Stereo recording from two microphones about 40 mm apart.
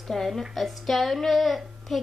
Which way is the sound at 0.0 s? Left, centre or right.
Centre.